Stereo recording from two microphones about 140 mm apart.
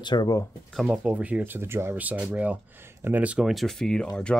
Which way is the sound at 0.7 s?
5° right (ahead or behind).